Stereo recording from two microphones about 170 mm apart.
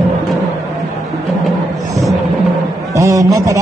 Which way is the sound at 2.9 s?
20° right (ahead or behind).